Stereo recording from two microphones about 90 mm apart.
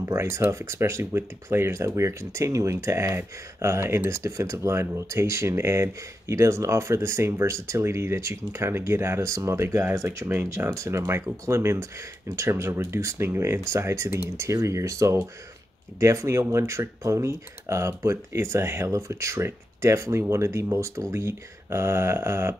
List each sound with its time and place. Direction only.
0.0 s speech: 30° right (ahead or behind)